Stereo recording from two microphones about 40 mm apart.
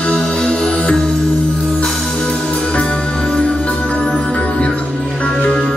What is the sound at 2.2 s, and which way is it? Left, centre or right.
Music, left.